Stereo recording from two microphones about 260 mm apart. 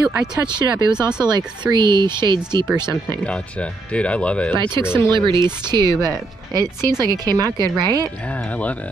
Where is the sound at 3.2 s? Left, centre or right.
Centre.